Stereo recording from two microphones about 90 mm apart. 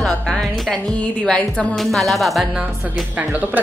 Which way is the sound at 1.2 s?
10° left (ahead or behind).